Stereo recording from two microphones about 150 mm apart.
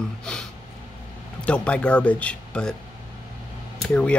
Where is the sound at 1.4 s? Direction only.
10° left (ahead or behind).